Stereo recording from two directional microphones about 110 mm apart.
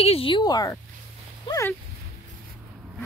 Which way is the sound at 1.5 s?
50° left (ahead or behind).